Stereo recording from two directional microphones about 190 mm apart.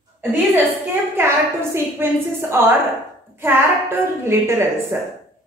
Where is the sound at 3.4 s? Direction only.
15° right (ahead or behind).